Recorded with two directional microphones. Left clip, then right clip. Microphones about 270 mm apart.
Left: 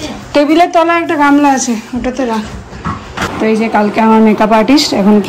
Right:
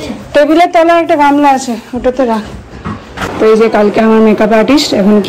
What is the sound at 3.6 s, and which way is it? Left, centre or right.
Speech, left.